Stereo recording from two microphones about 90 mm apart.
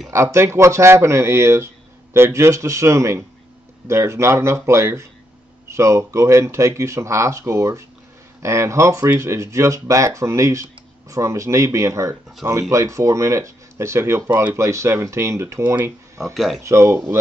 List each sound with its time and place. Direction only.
0.1 s speech: 30° right (ahead or behind)
15.6 s speech: 15° right (ahead or behind)
16.3 s speech: centre (ahead or behind)
16.6 s speech: 30° right (ahead or behind)